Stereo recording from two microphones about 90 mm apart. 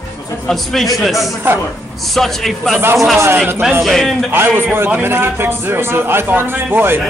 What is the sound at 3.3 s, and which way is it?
Speech, 15° right (ahead or behind).